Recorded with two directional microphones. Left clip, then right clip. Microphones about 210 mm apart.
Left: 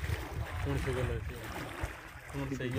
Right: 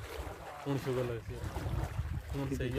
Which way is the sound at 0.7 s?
60° right (ahead or behind).